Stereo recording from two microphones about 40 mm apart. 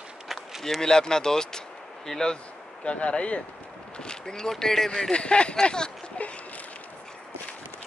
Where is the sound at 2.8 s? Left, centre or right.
Left; by 5.1 s centre.